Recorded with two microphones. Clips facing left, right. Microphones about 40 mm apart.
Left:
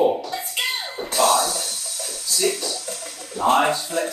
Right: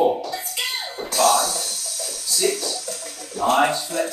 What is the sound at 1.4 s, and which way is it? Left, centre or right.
Music, left.